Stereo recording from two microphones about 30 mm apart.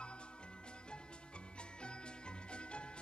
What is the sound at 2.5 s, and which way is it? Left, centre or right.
Music, left.